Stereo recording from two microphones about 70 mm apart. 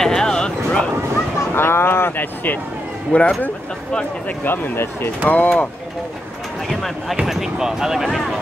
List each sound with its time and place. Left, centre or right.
0.0 s a sound: centre
1.5 s a sound: left
3.1 s speech: centre
4.5 s speech: left
5.2 s speech: left
6.7 s speech: centre